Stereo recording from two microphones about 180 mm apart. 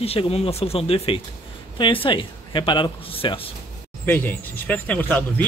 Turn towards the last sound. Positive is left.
turn(degrees=10)  # may be behind; listen again after turning